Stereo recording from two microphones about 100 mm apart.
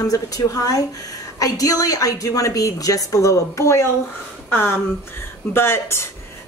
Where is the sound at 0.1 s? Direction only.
35° left (ahead or behind).